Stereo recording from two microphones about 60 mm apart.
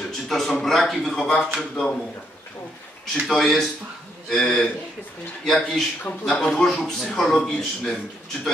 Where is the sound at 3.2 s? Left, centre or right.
Centre.